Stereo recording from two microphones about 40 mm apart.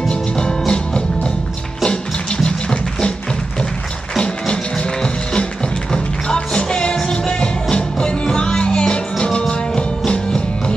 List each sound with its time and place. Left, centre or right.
0.1 s music: left
4.2 s music: left